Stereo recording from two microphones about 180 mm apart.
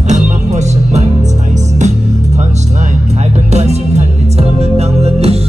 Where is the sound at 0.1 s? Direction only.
40° right (ahead or behind).